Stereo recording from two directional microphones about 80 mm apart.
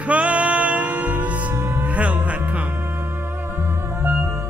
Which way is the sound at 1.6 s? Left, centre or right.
Right.